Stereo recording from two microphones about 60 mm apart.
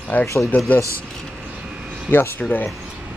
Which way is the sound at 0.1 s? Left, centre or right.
Left.